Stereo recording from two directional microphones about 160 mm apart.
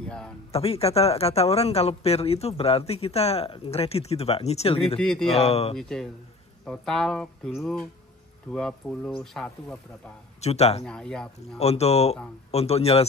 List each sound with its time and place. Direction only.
0.0 s a sound: 5° left (ahead or behind)
0.5 s speech: 40° left (ahead or behind)
5.0 s speech: 5° left (ahead or behind)
5.4 s speech: 40° left (ahead or behind)
5.8 s speech: 5° left (ahead or behind)
10.4 s a man's voice: 40° left (ahead or behind)
10.9 s speech: 5° left (ahead or behind)
11.3 s speech: 40° left (ahead or behind)